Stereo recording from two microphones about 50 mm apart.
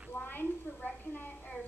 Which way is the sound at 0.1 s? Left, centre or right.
Left.